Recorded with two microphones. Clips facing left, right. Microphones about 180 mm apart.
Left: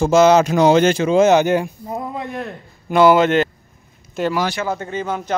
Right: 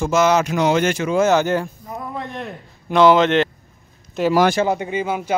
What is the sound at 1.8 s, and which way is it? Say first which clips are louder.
Speech: left 5 dB; 25° left (ahead or behind).